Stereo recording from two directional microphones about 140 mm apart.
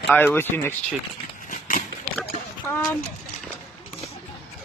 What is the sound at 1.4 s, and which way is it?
Horse, 70° left (ahead or behind).